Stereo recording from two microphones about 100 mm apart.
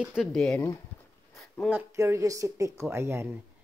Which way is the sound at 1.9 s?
30° right (ahead or behind).